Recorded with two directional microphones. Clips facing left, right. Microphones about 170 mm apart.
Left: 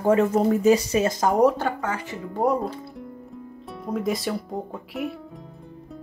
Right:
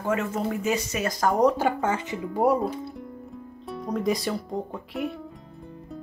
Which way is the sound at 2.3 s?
10° right (ahead or behind).